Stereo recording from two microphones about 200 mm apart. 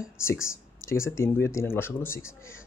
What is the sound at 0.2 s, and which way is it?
Speech, 15° left (ahead or behind).